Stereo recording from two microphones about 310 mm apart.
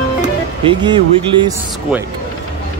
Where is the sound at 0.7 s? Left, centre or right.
Centre.